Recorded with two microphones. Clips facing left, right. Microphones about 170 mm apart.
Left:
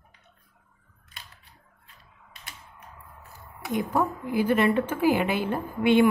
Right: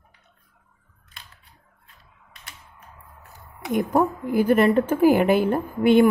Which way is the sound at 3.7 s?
50° right (ahead or behind).